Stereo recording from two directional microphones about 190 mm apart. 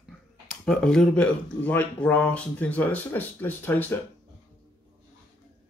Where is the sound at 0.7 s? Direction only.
5° left (ahead or behind).